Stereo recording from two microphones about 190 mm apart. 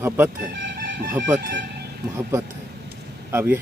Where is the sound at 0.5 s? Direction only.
65° right (ahead or behind).